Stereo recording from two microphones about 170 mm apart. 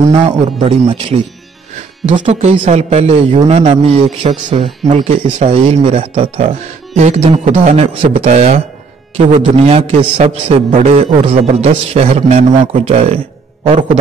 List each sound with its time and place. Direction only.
0.1 s a man's voice: 30° right (ahead or behind)
2.1 s a man's voice: 30° right (ahead or behind)
4.3 s speech: 25° right (ahead or behind)
4.8 s a man's voice: 45° right (ahead or behind)